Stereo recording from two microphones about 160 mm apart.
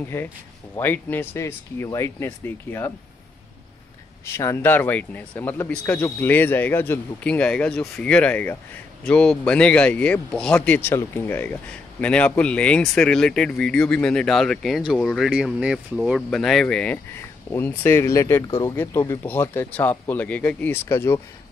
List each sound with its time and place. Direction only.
0.1 s speech: 15° left (ahead or behind)
4.3 s speech: 15° left (ahead or behind)